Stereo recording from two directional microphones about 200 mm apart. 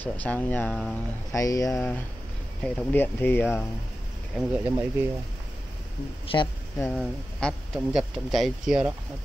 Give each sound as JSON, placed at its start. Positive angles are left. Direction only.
{"t": 0.0, "sound": "speech", "side_deg": 10}
{"t": 1.3, "sound": "speech", "side_deg": 15}
{"t": 4.4, "sound": "speech", "side_deg": -10}
{"t": 6.2, "sound": "speech", "side_deg": 25}
{"t": 6.8, "sound": "speech", "side_deg": 5}